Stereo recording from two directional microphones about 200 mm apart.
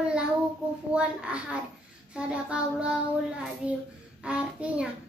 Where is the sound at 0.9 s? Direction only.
5° right (ahead or behind).